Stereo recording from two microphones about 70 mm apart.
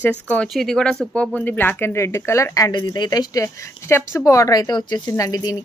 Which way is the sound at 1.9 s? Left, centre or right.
Left.